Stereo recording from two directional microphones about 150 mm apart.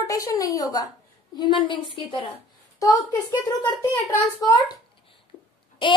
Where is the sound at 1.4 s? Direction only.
35° left (ahead or behind).